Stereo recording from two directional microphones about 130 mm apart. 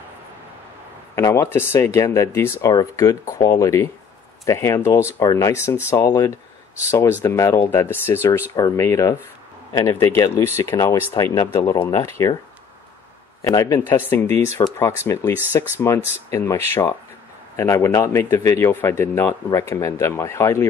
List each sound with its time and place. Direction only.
1.1 s a man's voice: 20° left (ahead or behind)
13.4 s a man's voice: 25° left (ahead or behind)